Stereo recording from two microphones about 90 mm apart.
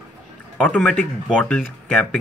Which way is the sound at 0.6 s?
10° left (ahead or behind).